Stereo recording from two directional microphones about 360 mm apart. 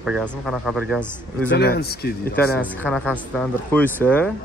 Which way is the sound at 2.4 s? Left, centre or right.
Centre.